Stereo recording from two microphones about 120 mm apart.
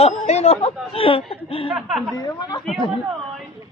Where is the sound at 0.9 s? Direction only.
50° left (ahead or behind).